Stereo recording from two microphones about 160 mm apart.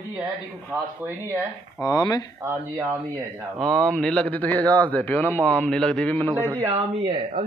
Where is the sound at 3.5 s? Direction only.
Centre (ahead or behind).